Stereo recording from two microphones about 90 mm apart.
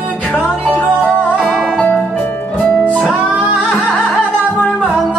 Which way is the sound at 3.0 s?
15° right (ahead or behind).